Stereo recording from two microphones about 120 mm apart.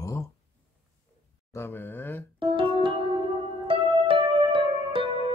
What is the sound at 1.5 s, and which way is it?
Speech, 20° left (ahead or behind).